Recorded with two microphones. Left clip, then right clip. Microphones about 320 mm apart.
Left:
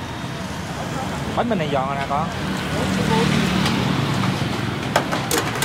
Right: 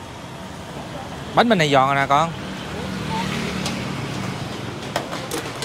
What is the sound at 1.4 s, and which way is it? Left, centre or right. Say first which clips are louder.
Speech: right 7 dB; right.